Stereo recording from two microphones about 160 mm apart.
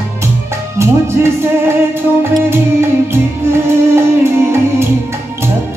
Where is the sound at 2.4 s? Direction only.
15° right (ahead or behind).